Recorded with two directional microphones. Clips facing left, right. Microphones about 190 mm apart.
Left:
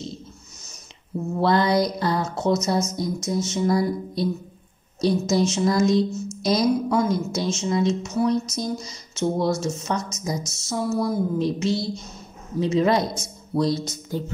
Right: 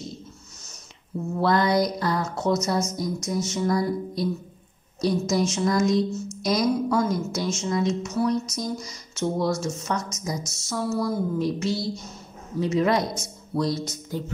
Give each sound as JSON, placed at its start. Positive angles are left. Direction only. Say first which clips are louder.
{"t": 1.4, "sound": "a woman's voice", "louder": "left 1 dB", "side_deg": 25}